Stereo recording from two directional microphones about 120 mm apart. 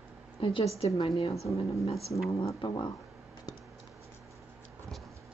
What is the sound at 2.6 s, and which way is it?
Speech, 40° left (ahead or behind).